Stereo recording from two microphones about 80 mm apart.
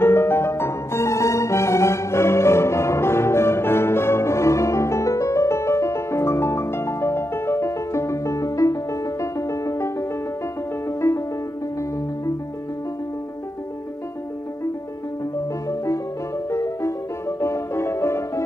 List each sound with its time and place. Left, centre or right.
0.0 s music: left
15.7 s music: left